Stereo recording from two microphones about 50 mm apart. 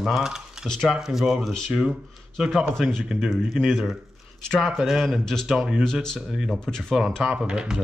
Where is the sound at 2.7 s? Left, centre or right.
Centre.